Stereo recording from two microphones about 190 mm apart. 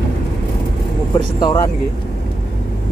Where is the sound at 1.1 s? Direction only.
20° left (ahead or behind).